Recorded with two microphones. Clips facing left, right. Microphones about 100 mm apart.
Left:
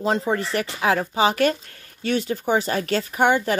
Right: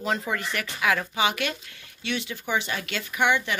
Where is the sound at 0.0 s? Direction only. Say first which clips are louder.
Left 6 dB; 30° left (ahead or behind).